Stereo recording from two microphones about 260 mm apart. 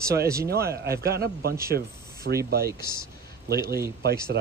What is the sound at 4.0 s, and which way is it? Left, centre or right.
Speech, right.